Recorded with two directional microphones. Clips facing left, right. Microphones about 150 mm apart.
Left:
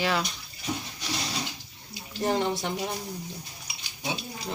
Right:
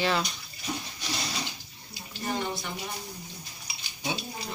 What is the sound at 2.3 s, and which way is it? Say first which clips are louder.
Speech: left 5 dB; 90° left.